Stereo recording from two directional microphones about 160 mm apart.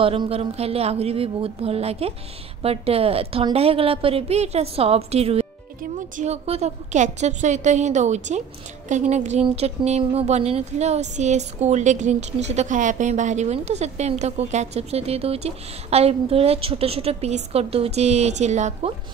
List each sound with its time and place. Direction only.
0.0 s a woman's voice: 35° right (ahead or behind)